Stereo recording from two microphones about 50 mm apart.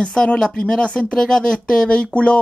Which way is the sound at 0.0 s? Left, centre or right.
Centre.